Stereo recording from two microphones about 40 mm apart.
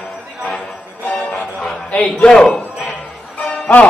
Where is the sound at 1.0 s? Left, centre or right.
Left.